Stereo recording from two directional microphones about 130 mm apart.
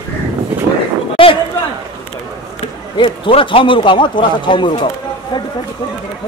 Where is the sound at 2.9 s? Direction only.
40° left (ahead or behind).